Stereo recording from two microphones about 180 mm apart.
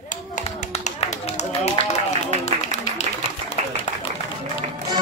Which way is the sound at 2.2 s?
40° left (ahead or behind).